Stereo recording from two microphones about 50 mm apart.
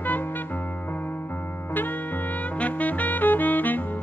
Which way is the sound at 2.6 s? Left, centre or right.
Left.